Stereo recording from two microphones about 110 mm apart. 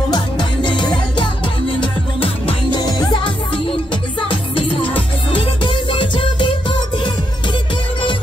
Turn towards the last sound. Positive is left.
turn(degrees=45)  # may be behind; listen again after turning